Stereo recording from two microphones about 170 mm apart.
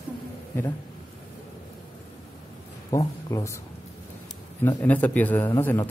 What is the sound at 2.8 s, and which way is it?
Speech, 20° left (ahead or behind).